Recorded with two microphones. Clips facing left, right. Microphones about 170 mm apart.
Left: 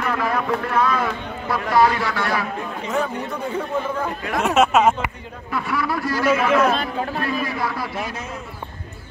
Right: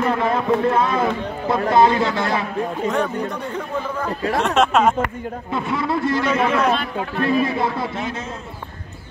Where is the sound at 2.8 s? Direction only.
5° left (ahead or behind).